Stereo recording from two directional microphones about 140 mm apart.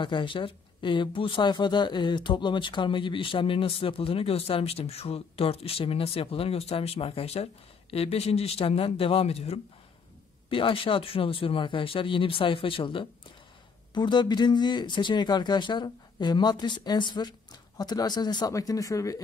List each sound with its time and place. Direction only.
0.0 s speech: 35° left (ahead or behind)